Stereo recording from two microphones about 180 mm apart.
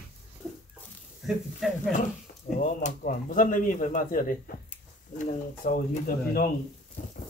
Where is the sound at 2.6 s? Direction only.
45° left (ahead or behind).